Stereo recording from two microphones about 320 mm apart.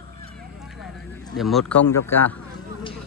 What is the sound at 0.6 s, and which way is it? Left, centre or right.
Vehicle, centre.